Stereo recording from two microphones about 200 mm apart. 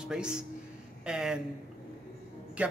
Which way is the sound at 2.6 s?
5° right (ahead or behind).